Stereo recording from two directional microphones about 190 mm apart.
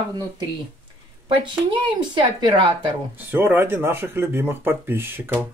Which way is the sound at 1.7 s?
25° right (ahead or behind).